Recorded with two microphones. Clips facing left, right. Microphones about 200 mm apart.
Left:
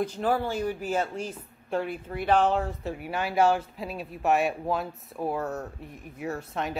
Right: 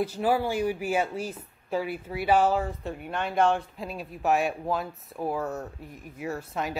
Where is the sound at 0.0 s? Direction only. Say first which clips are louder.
Right 1 dB; 10° right (ahead or behind).